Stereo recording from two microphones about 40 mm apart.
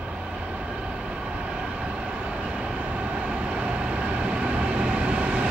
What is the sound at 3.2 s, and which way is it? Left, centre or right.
Vehicle, right.